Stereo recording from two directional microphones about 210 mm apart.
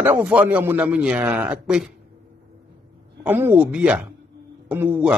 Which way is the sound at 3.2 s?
10° right (ahead or behind).